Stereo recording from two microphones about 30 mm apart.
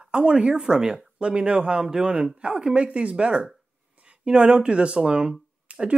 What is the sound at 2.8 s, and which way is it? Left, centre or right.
Speech, right.